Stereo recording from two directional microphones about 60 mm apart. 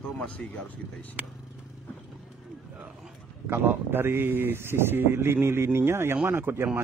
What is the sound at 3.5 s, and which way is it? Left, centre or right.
Speech, right.